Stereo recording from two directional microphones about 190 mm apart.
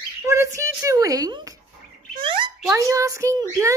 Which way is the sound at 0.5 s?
15° right (ahead or behind).